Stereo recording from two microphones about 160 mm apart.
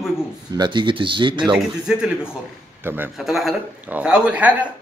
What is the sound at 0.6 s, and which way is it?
Speech, 30° right (ahead or behind).